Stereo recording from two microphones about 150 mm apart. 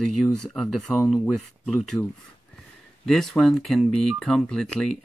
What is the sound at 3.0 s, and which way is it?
Speech, 5° left (ahead or behind).